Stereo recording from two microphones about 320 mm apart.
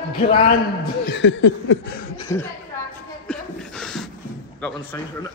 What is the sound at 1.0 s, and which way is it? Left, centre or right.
Chuckle, left.